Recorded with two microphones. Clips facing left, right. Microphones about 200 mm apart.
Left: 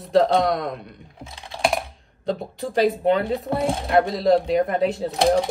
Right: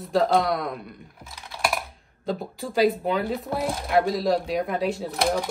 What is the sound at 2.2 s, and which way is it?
Speech, centre (ahead or behind).